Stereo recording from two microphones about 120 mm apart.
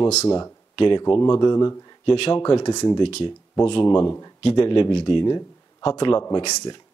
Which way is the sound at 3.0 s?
45° left (ahead or behind).